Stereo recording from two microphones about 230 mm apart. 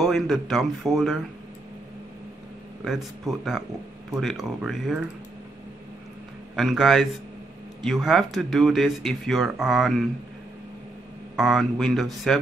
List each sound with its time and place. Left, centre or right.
0.0 s speech: centre
2.8 s speech: centre
6.5 s speech: centre
11.3 s speech: centre